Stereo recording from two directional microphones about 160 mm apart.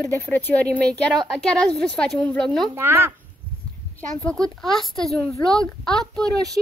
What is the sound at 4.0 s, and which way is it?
A woman's voice, 10° left (ahead or behind).